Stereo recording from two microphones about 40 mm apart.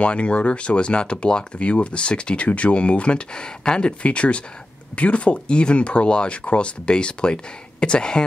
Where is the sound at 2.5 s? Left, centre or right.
Left.